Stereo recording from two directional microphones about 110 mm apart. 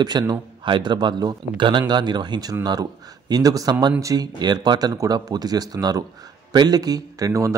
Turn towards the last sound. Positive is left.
turn(degrees=-30)  # may be behind; listen again after turning